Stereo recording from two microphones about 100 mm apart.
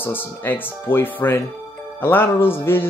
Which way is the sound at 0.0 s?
20° left (ahead or behind).